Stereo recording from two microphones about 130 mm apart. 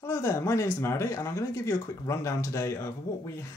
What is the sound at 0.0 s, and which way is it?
Speech, 20° left (ahead or behind).